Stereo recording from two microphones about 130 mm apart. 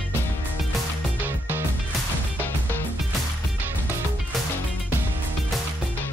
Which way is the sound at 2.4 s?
15° left (ahead or behind).